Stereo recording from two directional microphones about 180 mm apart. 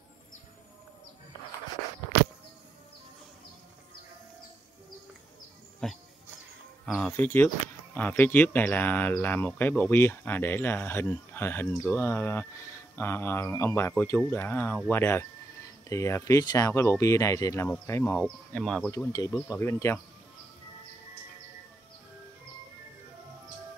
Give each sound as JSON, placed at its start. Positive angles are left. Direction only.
{"t": 5.8, "sound": "speech", "side_deg": 5}
{"t": 18.9, "sound": "speech", "side_deg": 15}